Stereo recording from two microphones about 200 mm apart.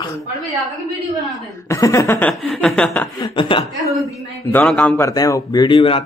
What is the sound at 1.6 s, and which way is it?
Chuckle, 15° left (ahead or behind).